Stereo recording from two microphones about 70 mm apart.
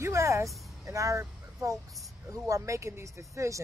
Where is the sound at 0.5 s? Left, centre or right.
Centre.